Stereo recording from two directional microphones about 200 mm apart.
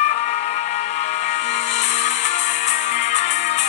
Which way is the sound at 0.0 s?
35° left (ahead or behind).